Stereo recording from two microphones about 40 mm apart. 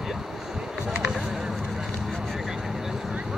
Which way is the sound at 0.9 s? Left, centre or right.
Centre.